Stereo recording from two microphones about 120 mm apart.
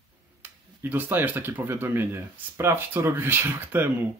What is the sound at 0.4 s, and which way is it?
Speech, 15° right (ahead or behind).